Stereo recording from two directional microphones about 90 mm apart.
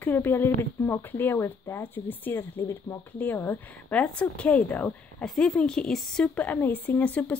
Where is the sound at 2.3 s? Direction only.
30° left (ahead or behind).